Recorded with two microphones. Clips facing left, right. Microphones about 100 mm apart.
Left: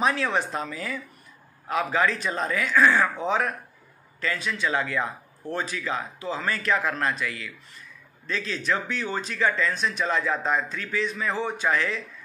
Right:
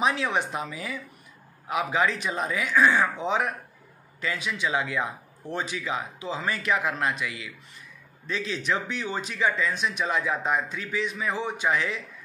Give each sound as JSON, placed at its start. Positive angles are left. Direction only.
{"t": 0.0, "sound": "speech", "side_deg": -15}